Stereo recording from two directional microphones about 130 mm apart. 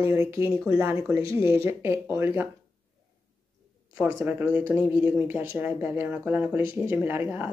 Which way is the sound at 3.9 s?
15° right (ahead or behind).